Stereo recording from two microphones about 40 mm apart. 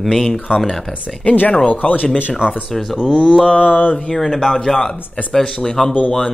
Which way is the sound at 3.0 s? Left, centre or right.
Left.